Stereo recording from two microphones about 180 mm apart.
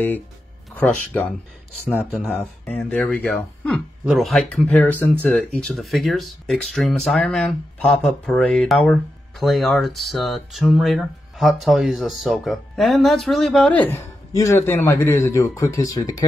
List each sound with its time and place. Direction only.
0.7 s speech: 10° left (ahead or behind)